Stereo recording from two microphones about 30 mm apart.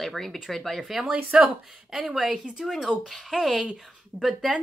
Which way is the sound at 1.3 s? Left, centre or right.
Right.